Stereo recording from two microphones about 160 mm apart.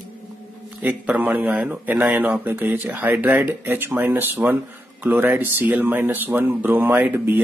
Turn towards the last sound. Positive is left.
turn(degrees=-15)  # may be behind; listen again after turning